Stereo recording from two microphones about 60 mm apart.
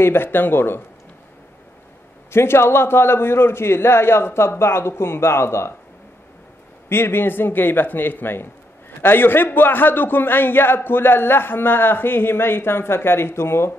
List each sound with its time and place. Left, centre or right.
0.0 s a man's voice: left
2.3 s a man's voice: left
6.9 s a man's voice: left